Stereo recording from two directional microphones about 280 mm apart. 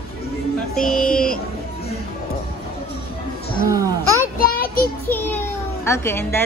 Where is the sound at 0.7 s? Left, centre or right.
Centre.